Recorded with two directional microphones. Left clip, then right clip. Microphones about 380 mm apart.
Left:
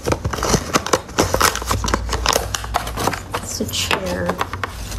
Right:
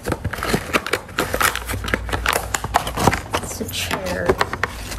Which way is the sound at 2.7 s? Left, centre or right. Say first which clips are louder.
Right 4 dB; centre.